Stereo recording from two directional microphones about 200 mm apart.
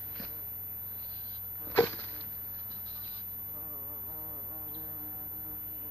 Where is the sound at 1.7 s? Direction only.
10° left (ahead or behind).